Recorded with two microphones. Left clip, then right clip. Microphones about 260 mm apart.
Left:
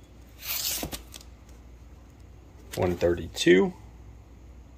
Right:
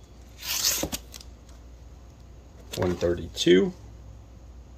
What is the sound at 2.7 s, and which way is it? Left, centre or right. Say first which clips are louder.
Speech: left 1 dB; centre.